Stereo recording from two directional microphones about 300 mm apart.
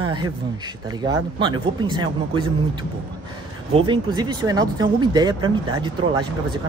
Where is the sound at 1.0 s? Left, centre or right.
Centre.